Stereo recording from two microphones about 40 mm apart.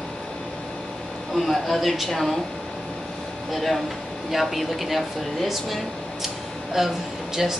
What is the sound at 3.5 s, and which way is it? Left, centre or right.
Speech, centre.